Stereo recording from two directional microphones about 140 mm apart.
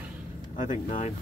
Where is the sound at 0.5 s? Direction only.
60° left (ahead or behind).